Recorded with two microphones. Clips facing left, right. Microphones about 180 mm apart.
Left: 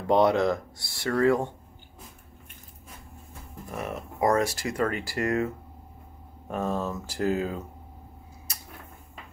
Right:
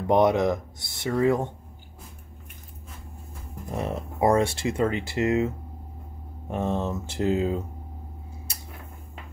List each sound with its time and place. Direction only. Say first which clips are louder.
0.0 s speech: right 1 dB; 20° right (ahead or behind)
3.7 s speech: right 4 dB; 30° right (ahead or behind)
6.5 s speech: right 2 dB; 25° right (ahead or behind)
8.5 s tick-tock: right 1 dB; 30° right (ahead or behind)